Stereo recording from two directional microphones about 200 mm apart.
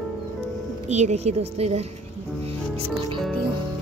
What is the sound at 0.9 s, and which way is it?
Speech, 35° right (ahead or behind).